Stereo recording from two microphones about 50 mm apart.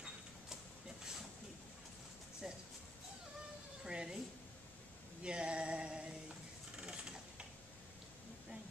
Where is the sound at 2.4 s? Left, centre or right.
Centre.